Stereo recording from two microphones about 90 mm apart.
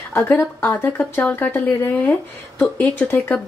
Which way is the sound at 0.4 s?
20° left (ahead or behind).